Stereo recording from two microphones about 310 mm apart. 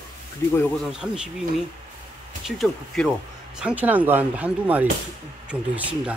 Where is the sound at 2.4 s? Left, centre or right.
Centre.